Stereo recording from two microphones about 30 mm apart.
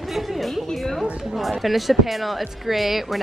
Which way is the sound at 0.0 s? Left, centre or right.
Centre.